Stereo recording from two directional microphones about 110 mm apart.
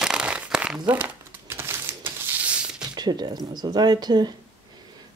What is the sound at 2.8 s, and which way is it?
Speech, 40° right (ahead or behind).